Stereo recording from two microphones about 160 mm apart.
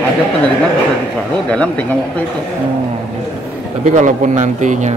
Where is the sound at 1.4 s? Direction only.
5° left (ahead or behind).